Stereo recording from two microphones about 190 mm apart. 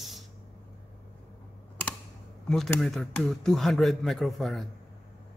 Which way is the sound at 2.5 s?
Centre (ahead or behind).